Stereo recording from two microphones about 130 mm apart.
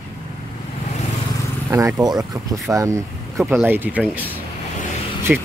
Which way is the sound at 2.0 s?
30° right (ahead or behind).